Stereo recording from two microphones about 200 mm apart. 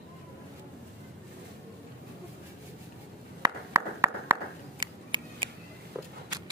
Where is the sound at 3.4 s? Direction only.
15° right (ahead or behind).